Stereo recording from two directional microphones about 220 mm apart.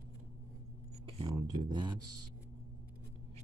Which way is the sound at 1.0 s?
20° right (ahead or behind).